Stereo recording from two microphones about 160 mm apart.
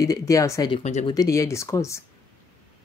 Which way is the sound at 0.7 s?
45° left (ahead or behind).